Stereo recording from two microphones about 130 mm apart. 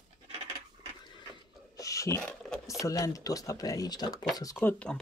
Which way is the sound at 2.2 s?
5° left (ahead or behind).